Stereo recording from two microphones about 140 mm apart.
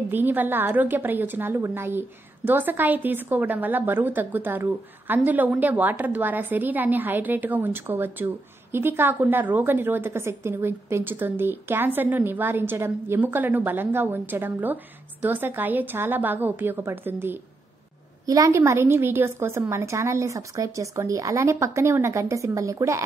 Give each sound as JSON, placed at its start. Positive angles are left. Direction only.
{"t": 0.1, "sound": "a woman's voice", "side_deg": -15}